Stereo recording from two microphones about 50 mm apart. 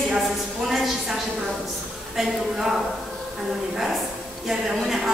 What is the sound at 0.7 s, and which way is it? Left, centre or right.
Speech, centre.